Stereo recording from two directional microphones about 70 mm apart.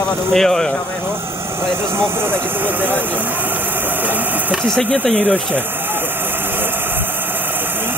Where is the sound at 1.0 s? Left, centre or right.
Right.